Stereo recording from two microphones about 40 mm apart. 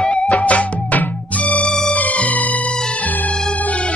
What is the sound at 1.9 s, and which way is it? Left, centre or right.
Music, left.